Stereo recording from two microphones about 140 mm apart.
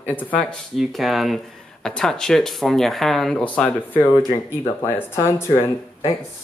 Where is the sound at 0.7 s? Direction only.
Centre (ahead or behind); by 5.6 s 20° left (ahead or behind).